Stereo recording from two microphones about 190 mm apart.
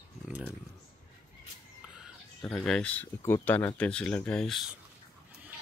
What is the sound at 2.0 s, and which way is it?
Speech, centre (ahead or behind).